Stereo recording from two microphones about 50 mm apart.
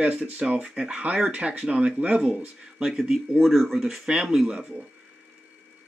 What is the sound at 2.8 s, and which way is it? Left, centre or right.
Speech, centre.